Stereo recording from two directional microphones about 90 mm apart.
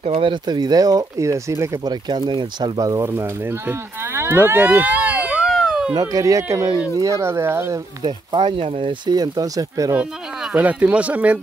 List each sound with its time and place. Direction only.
0.0 s speech: 70° right (ahead or behind); by 1.8 s 30° right (ahead or behind)
1.9 s speech: 55° right (ahead or behind)
3.1 s speech: 25° right (ahead or behind); by 5.9 s 5° right (ahead or behind)
5.9 s speech: 40° right (ahead or behind)
8.4 s speech: 90° right
9.1 s speech: 45° right (ahead or behind)
9.9 s speech: 15° right (ahead or behind)